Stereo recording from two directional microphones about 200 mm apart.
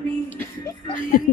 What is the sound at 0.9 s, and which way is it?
Speech, 45° left (ahead or behind).